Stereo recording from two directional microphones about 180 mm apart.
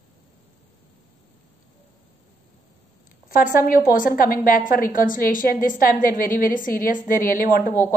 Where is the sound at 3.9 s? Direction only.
50° left (ahead or behind).